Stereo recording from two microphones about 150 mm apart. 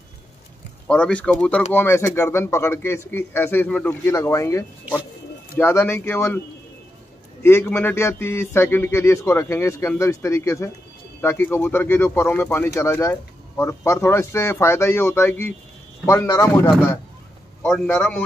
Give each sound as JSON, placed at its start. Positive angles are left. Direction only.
{"t": 0.8, "sound": "a man's voice", "side_deg": 5}
{"t": 7.4, "sound": "a man's voice", "side_deg": 15}
{"t": 17.6, "sound": "a man's voice", "side_deg": 5}